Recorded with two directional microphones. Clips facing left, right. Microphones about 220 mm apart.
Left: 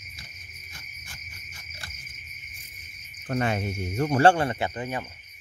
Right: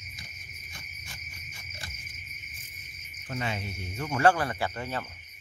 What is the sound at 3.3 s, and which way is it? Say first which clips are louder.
Speech: left 7 dB; 50° left (ahead or behind).